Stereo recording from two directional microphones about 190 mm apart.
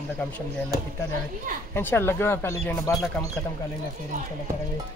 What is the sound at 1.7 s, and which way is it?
Speech, 10° left (ahead or behind).